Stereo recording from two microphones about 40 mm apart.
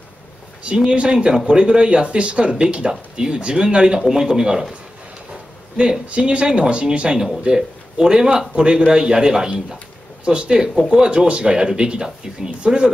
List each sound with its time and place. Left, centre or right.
0.7 s speech: right
6.0 s speech: right